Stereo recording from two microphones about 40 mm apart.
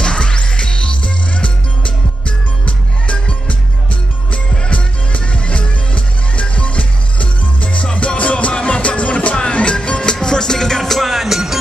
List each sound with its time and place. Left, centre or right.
0.0 s music: left
10.8 s music: centre